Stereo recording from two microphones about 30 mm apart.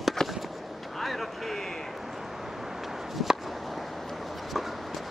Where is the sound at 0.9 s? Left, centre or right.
Centre.